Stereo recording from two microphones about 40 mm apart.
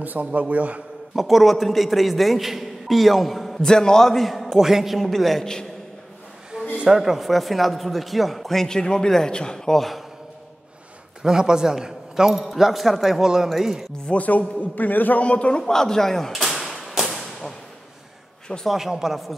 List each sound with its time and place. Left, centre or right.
0.0 s a man's voice: right
1.1 s a man's voice: centre
3.6 s a man's voice: centre
4.5 s a man's voice: centre
5.0 s a man's voice: centre
6.8 s a man's voice: centre
11.2 s a man's voice: centre
14.0 s a man's voice: left
15.2 s a man's voice: left
15.6 s a man's voice: centre
16.3 s a sound: centre
16.7 s whip: centre
18.7 s a man's voice: centre